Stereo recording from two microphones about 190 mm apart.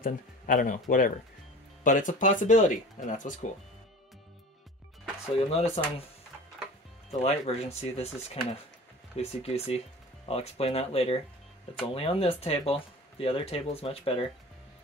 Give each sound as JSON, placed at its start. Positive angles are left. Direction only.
{"t": 0.0, "sound": "speech", "side_deg": 45}
{"t": 5.5, "sound": "speech", "side_deg": 30}
{"t": 7.1, "sound": "speech", "side_deg": 35}